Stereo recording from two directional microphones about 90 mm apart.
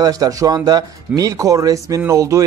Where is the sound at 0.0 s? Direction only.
45° right (ahead or behind).